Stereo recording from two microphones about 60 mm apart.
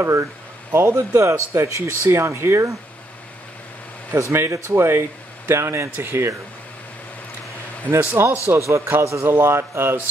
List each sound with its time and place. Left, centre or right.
0.0 s a man's voice: right
0.7 s speech: right
4.2 s speech: right
7.9 s a man's voice: right
9.3 s speech: right